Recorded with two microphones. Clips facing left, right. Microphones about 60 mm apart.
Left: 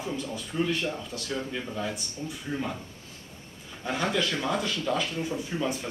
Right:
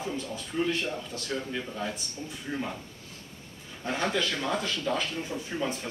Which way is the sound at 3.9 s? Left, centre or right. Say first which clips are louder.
Left 1 dB; centre.